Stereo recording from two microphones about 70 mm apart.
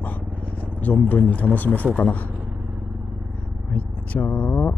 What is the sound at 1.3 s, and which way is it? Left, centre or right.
Speech, left.